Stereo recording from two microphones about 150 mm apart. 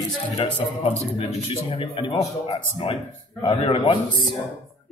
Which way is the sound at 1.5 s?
35° left (ahead or behind).